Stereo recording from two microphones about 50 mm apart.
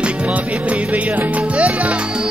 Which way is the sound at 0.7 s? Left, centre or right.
Right.